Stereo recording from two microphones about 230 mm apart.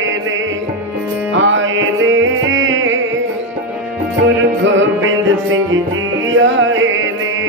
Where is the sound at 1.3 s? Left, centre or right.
Right.